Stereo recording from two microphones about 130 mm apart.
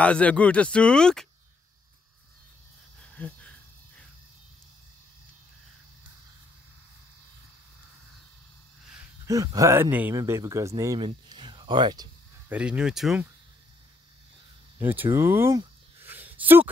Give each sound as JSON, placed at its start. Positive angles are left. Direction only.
{"t": 0.0, "sound": "speech", "side_deg": 10}
{"t": 3.2, "sound": "cricket", "side_deg": 10}
{"t": 9.3, "sound": "speech", "side_deg": -25}
{"t": 11.2, "sound": "a sound", "side_deg": -40}
{"t": 12.4, "sound": "speech", "side_deg": -10}
{"t": 14.8, "sound": "a sound", "side_deg": -15}